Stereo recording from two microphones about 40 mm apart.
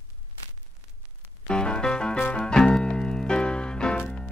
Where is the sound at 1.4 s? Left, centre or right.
Left.